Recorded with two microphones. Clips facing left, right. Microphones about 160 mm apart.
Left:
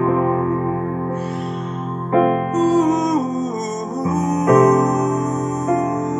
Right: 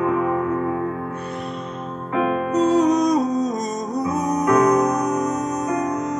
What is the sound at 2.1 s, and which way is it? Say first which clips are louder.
Music: left 6 dB; 40° left (ahead or behind).